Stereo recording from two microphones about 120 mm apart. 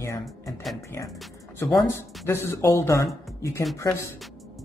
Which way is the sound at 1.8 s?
20° left (ahead or behind).